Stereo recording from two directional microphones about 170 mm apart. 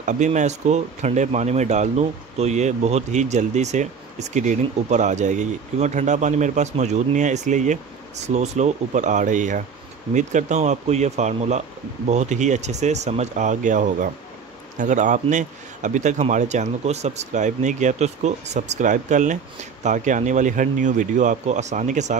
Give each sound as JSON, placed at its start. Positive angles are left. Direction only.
{"t": 0.0, "sound": "speech", "side_deg": -45}